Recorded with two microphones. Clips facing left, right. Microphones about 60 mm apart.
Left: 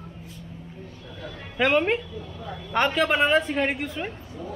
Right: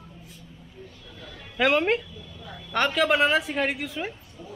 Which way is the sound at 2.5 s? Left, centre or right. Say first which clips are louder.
Left 2 dB; centre.